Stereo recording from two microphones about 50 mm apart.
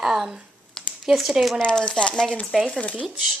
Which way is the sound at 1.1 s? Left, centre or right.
Centre.